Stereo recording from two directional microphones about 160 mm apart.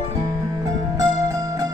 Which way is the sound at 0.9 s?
20° right (ahead or behind).